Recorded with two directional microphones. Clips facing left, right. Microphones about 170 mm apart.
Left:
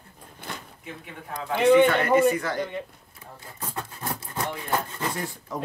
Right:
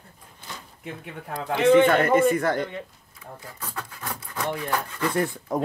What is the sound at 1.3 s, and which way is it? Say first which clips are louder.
Speech: right 1 dB; 10° left (ahead or behind).